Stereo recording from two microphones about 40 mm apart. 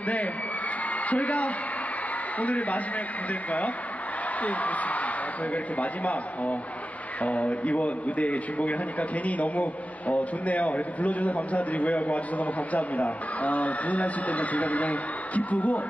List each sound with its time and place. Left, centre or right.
1.0 s a woman's voice: left
4.4 s a man's voice: left